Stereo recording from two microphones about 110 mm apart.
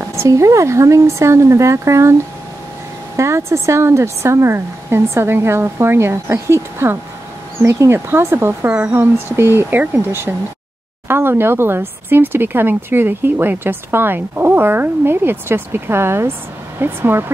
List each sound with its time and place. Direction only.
0.1 s speech: 25° right (ahead or behind)
3.2 s speech: 25° right (ahead or behind)